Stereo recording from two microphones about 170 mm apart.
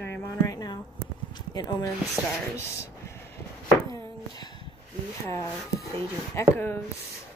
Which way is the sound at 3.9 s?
25° left (ahead or behind).